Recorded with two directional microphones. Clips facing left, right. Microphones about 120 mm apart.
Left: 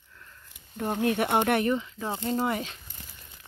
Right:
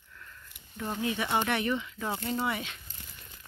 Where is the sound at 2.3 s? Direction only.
40° left (ahead or behind).